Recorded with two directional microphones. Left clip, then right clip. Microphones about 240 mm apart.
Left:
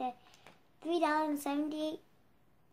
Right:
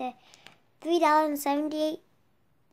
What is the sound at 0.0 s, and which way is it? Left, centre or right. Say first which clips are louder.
A woman's voice: right 3 dB; right.